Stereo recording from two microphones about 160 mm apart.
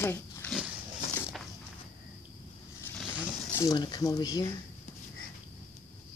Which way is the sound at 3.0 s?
5° right (ahead or behind).